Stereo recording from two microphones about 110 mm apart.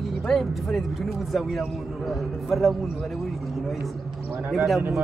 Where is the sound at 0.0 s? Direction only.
Centre (ahead or behind).